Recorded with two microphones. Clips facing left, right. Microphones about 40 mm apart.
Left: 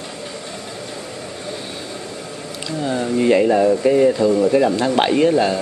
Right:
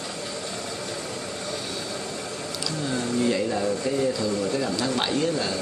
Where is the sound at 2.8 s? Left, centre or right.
Left.